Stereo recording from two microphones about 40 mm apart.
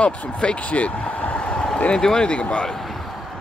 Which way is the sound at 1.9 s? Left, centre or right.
Centre.